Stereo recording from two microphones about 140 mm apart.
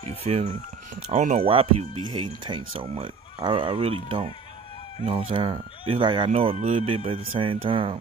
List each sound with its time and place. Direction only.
0.2 s speech: 50° right (ahead or behind)
1.4 s speech: 40° right (ahead or behind)
6.3 s speech: 50° right (ahead or behind)